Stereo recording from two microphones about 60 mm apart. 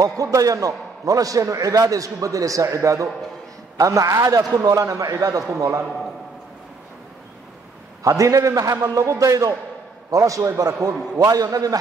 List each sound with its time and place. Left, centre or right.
0.2 s a man's voice: right
3.7 s a man's voice: right
5.6 s a man's voice: right
8.0 s a man's voice: right
10.6 s a man's voice: right